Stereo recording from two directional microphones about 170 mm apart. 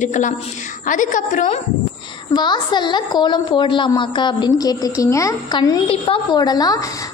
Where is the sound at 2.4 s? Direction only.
25° left (ahead or behind).